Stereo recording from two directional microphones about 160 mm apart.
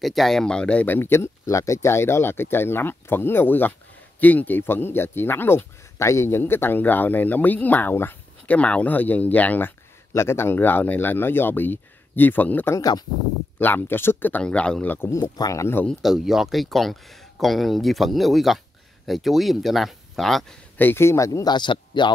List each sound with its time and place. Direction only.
0.0 s speech: centre (ahead or behind)
16.0 s speech: centre (ahead or behind)
20.7 s speech: 15° left (ahead or behind); by 22.1 s 30° left (ahead or behind)